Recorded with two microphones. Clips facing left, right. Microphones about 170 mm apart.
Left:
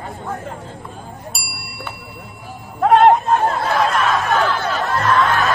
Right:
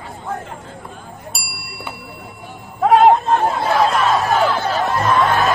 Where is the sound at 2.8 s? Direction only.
Centre (ahead or behind).